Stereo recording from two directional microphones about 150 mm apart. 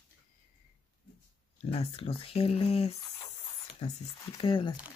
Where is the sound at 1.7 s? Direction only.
40° left (ahead or behind).